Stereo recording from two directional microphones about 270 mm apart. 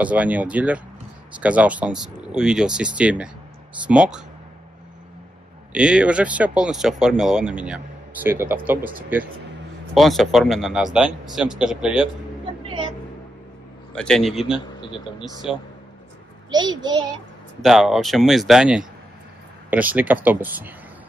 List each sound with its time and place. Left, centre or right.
0.0 s speech: centre
5.7 s speech: centre
9.9 s speech: centre
12.6 s music: centre
13.9 s speech: centre
14.8 s speech: centre
15.5 s speech: centre
16.4 s speech: centre
17.6 s speech: centre